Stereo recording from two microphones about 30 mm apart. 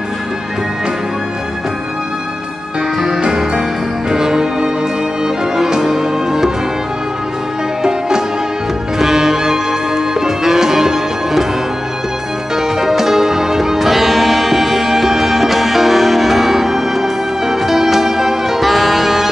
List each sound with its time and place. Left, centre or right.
4.1 s music: right
9.0 s music: centre
12.5 s music: centre